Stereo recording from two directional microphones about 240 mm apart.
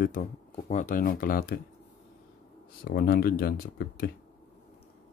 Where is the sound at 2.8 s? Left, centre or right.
Left.